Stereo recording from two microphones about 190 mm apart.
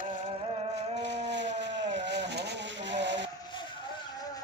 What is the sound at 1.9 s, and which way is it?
Vehicle, 65° right (ahead or behind).